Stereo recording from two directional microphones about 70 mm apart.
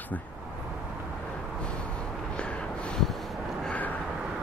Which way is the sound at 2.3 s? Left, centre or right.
Centre.